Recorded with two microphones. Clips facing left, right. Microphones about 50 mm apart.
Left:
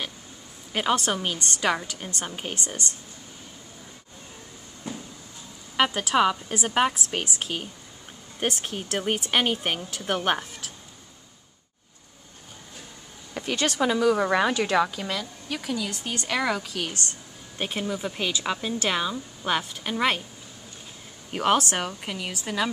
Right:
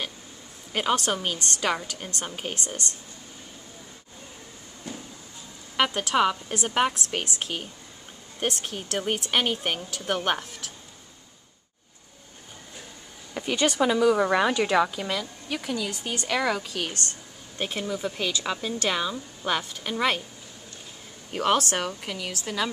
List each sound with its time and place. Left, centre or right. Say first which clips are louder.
0.7 s speech: left 1 dB; centre
4.9 s a sound: left 2 dB; centre
5.8 s speech: left 1 dB; centre
13.3 s speech: right 2 dB; centre
21.3 s speech: left 1 dB; centre